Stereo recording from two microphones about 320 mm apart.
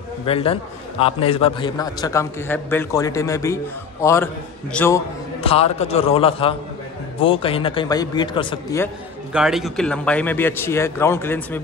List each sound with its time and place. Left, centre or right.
0.2 s a man's voice: centre
9.3 s a man's voice: centre